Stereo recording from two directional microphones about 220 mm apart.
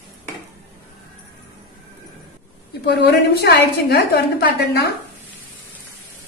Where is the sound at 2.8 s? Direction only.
50° left (ahead or behind).